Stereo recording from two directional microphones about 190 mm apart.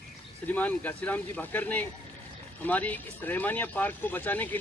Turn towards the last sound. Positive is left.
turn(degrees=10)  # may be behind; listen again after turning